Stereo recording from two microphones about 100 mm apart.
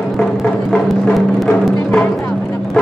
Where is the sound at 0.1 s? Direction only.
Centre (ahead or behind).